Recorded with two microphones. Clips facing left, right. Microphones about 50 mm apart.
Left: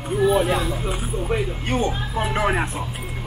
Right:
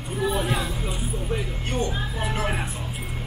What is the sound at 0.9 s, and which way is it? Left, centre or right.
Speech, left.